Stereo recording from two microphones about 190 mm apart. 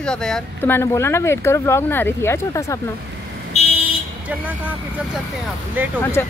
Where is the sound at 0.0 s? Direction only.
5° left (ahead or behind).